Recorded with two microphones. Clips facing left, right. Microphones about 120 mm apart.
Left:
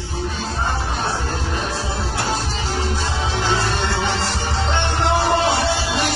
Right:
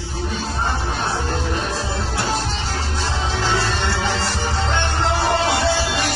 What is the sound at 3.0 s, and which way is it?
Music, 20° left (ahead or behind).